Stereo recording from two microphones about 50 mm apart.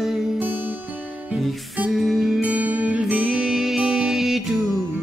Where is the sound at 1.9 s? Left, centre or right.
Centre.